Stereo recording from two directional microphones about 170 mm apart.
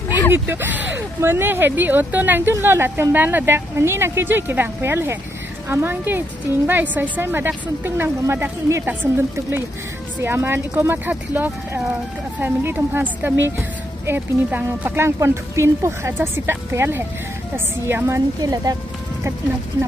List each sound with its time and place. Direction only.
0.3 s speech: 10° right (ahead or behind)